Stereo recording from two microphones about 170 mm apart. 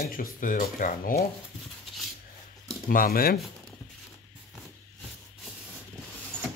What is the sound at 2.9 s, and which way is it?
Speech, 60° left (ahead or behind).